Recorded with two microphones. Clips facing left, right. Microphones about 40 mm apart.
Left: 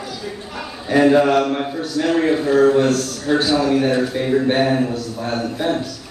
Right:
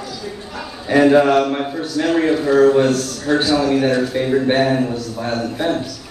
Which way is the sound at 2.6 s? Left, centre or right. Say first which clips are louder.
Right 2 dB; centre.